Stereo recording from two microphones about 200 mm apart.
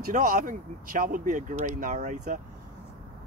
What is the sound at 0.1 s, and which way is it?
Speech, 45° right (ahead or behind).